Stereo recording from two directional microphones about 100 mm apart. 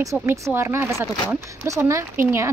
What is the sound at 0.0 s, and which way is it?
Speech, 30° right (ahead or behind).